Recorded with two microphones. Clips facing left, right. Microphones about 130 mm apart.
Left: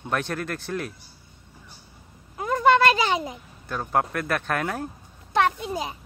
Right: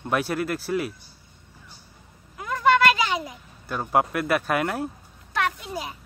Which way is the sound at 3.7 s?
5° right (ahead or behind).